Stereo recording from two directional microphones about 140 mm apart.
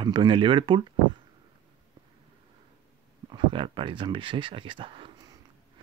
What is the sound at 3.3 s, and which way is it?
Speech, 35° right (ahead or behind).